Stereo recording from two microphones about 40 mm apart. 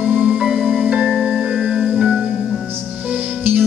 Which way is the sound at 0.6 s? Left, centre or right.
Centre.